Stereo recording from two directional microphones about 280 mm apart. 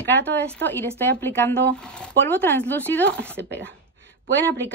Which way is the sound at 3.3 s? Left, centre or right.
Right.